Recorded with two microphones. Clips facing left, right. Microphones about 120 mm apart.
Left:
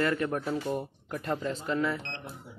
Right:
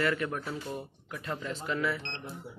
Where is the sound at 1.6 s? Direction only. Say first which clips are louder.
Left 1 dB; 35° left (ahead or behind).